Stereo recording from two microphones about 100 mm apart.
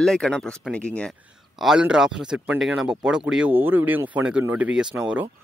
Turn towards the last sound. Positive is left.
turn(degrees=-10)  # may be behind; listen again after turning